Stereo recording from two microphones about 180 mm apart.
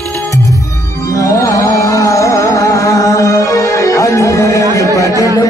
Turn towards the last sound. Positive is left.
turn(degrees=20)  # may be behind; listen again after turning